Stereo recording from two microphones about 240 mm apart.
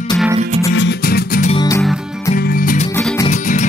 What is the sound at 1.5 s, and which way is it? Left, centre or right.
Music, centre.